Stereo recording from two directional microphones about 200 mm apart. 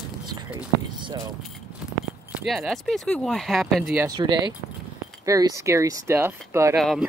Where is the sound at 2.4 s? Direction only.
Centre (ahead or behind).